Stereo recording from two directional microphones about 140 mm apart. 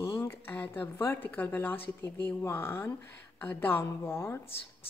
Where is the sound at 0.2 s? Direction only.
15° left (ahead or behind).